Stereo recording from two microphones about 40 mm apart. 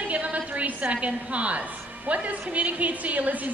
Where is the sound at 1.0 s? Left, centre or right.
Right.